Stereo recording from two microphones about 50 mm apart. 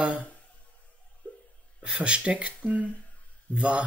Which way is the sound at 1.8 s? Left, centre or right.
Right.